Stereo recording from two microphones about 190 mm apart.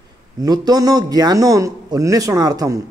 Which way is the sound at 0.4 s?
20° right (ahead or behind).